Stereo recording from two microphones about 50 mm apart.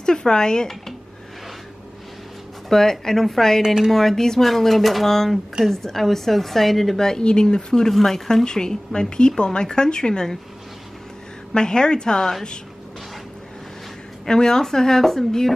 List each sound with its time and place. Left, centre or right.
0.0 s speech: centre
2.7 s a woman's voice: centre
3.6 s a woman's voice: centre
3.9 s a woman's voice: centre
11.5 s a woman's voice: centre
14.2 s a woman's voice: centre